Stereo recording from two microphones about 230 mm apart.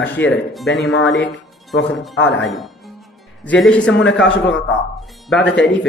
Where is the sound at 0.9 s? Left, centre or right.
Left.